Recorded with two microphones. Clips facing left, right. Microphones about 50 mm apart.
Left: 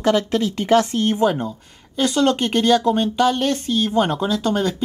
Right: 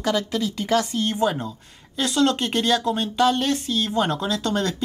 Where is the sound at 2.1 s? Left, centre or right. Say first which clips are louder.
Left 2 dB; centre.